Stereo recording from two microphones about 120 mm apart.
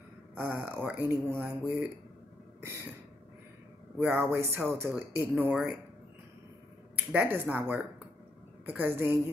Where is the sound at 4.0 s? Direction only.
20° right (ahead or behind).